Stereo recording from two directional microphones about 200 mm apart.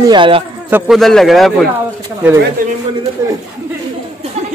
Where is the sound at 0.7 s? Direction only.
Centre (ahead or behind).